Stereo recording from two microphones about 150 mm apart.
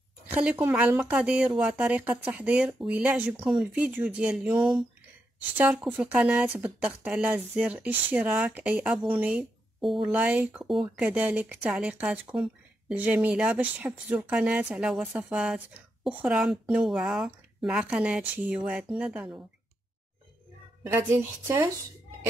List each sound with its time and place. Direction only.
0.3 s speech: 10° right (ahead or behind)
5.9 s speech: 10° right (ahead or behind)
20.8 s speech: 20° right (ahead or behind)